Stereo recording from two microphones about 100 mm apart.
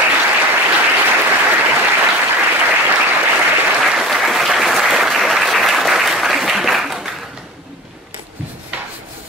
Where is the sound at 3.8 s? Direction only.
5° right (ahead or behind).